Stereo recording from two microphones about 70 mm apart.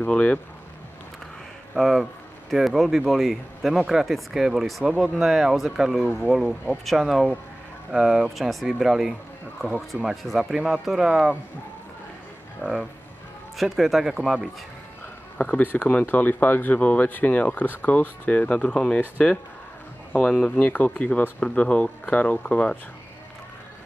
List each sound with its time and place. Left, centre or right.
0.0 s speech: centre
1.8 s speech: centre
12.6 s speech: centre
15.3 s speech: left
20.1 s speech: centre